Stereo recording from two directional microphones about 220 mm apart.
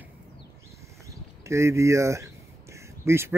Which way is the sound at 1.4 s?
15° right (ahead or behind).